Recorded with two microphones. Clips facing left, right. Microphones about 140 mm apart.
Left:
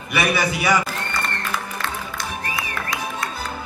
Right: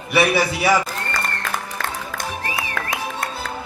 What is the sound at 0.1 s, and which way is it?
Speech, 30° right (ahead or behind).